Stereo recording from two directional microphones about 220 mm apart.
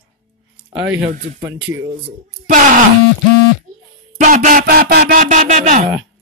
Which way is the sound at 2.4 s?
35° right (ahead or behind).